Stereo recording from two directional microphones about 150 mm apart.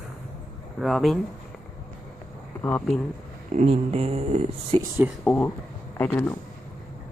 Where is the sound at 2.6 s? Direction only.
10° left (ahead or behind).